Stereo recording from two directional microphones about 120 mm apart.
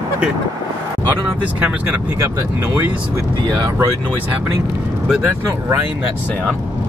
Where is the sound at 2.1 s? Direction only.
25° right (ahead or behind).